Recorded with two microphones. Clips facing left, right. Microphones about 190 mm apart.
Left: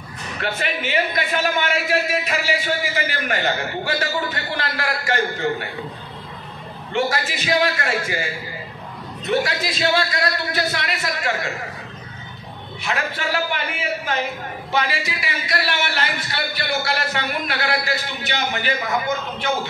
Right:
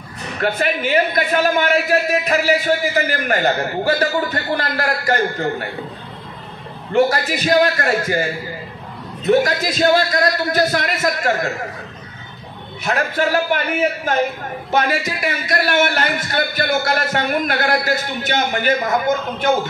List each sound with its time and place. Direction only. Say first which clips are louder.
0.4 s a man's voice: right 6 dB; 45° right (ahead or behind)
6.9 s a man's voice: right 6 dB; 40° right (ahead or behind)
12.8 s a man's voice: right 6 dB; 45° right (ahead or behind)